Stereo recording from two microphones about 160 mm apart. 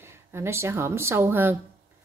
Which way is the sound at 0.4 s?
15° right (ahead or behind).